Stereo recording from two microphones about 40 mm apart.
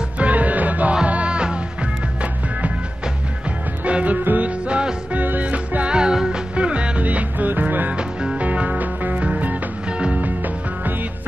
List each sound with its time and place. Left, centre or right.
0.2 s music: right
3.8 s music: right
5.1 s music: right
5.9 s music: right
6.5 s music: right
7.0 s music: right
7.9 s music: right
8.4 s music: right
10.2 s music: right